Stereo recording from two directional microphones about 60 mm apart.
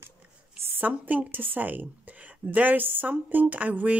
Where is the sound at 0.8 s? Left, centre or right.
Right.